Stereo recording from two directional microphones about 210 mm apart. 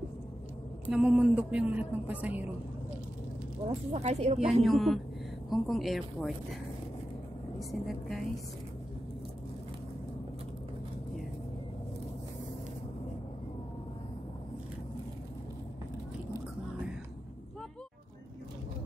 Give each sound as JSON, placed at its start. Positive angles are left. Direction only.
{"t": 0.8, "sound": "a woman's voice", "side_deg": -5}
{"t": 3.6, "sound": "speech", "side_deg": -30}
{"t": 4.6, "sound": "speech", "side_deg": 0}
{"t": 7.5, "sound": "speech", "side_deg": 0}